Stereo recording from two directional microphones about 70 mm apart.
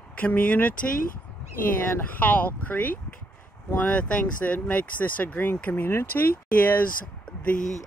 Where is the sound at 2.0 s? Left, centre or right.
Left.